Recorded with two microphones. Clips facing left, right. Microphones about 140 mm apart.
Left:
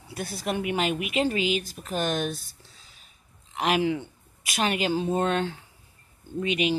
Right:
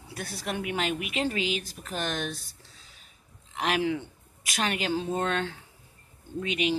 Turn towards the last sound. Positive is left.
turn(degrees=15)  # may be behind; listen again after turning